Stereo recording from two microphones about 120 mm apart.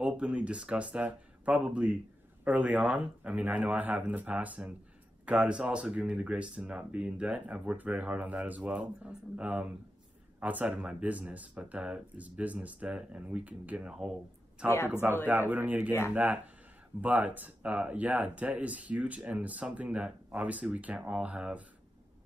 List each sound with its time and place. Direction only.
0.0 s speech: 10° right (ahead or behind)
14.9 s speech: 15° right (ahead or behind)